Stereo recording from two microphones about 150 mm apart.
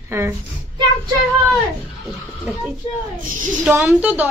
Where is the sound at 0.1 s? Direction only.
20° right (ahead or behind).